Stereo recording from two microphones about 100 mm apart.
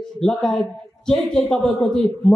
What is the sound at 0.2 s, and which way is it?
A man's voice, 5° left (ahead or behind).